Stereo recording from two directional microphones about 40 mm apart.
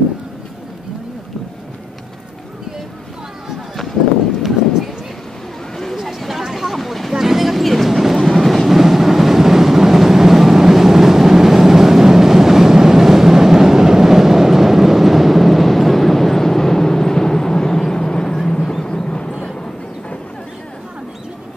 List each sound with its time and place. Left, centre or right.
5.9 s a sound: centre
7.2 s train: centre
19.0 s vehicle: left